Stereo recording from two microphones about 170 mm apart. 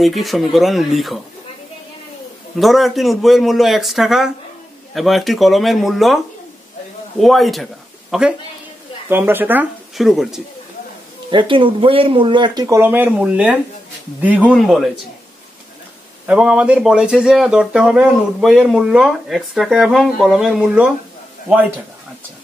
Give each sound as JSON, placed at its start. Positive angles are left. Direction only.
{"t": 0.0, "sound": "speech", "side_deg": 0}
{"t": 2.5, "sound": "a woman's voice", "side_deg": 0}
{"t": 9.9, "sound": "speech", "side_deg": 0}
{"t": 11.2, "sound": "speech", "side_deg": -30}
{"t": 16.3, "sound": "speech", "side_deg": -5}